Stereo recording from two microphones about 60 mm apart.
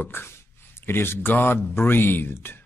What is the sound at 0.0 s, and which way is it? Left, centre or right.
Speech, left.